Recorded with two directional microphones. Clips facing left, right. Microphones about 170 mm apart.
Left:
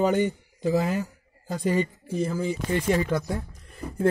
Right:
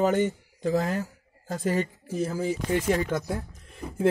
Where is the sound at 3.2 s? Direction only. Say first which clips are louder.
Left 1 dB; centre (ahead or behind).